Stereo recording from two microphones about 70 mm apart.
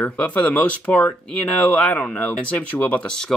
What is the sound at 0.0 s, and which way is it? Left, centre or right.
Speech, centre.